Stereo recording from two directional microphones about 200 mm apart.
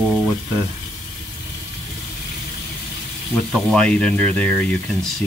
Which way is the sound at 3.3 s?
Centre (ahead or behind).